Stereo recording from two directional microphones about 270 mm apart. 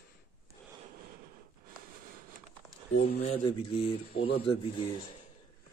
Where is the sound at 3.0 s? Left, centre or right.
Left.